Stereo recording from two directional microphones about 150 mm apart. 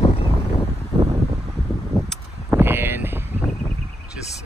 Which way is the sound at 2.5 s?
15° right (ahead or behind).